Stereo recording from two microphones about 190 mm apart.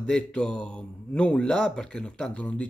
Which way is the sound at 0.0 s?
5° left (ahead or behind).